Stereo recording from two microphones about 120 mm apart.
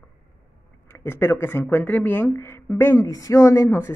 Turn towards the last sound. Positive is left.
turn(degrees=20)  # may be behind; listen again after turning